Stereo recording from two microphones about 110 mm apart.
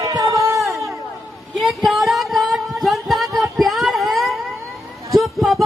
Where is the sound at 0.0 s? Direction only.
35° right (ahead or behind).